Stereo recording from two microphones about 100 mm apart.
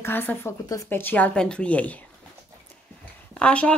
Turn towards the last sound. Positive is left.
turn(degrees=10)  # may be behind; listen again after turning